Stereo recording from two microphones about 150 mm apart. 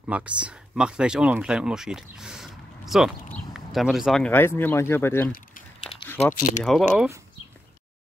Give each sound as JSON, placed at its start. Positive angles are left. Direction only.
{"t": 0.1, "sound": "speech", "side_deg": -10}
{"t": 5.8, "sound": "typing", "side_deg": 40}
{"t": 6.0, "sound": "a sound", "side_deg": 15}
{"t": 6.6, "sound": "speech", "side_deg": 0}